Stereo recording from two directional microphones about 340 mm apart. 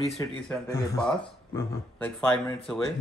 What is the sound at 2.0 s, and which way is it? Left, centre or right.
Speech, centre.